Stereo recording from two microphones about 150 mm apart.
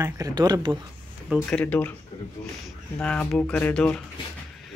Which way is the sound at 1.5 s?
10° left (ahead or behind).